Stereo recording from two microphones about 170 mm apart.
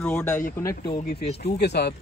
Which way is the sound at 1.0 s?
70° left (ahead or behind).